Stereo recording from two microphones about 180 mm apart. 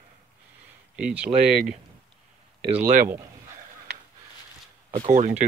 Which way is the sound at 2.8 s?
45° right (ahead or behind).